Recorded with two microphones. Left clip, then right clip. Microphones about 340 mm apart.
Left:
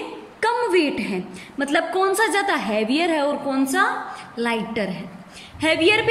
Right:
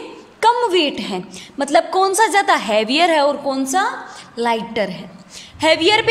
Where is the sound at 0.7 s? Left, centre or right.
Right.